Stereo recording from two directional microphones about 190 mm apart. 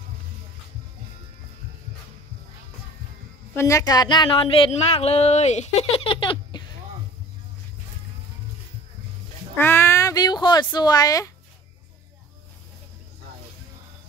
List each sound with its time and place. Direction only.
3.5 s a woman's voice: 15° left (ahead or behind)
9.6 s speech: 10° left (ahead or behind)